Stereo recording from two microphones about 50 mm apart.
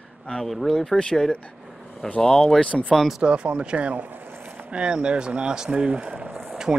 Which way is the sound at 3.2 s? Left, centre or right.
Right.